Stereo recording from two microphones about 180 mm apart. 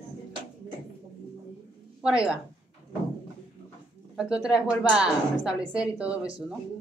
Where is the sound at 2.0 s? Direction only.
5° right (ahead or behind).